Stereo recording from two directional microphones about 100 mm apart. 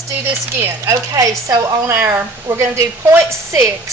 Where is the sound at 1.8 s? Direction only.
25° right (ahead or behind).